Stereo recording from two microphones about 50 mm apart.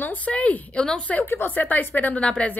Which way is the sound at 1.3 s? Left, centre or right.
Left.